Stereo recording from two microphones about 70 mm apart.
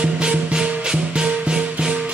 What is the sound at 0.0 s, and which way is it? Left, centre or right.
Music, centre.